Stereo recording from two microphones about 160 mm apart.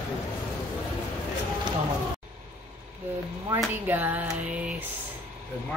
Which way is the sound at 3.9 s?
10° right (ahead or behind).